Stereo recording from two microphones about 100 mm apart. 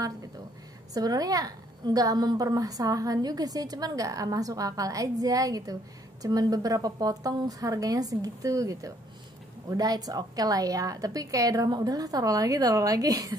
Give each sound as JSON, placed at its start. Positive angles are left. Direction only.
{"t": 0.9, "sound": "a woman's voice", "side_deg": -40}